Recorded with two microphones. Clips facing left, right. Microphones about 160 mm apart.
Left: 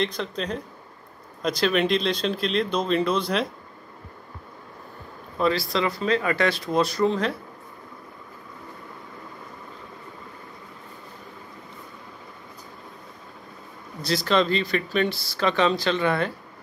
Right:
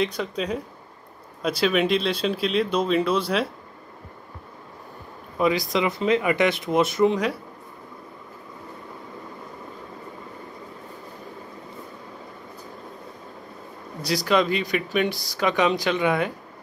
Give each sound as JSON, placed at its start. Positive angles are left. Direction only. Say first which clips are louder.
{"t": 0.0, "sound": "speech", "louder": "right 2 dB", "side_deg": -5}
{"t": 5.4, "sound": "speech", "louder": "right 1 dB", "side_deg": -15}
{"t": 14.0, "sound": "speech", "louder": "right 1 dB", "side_deg": -10}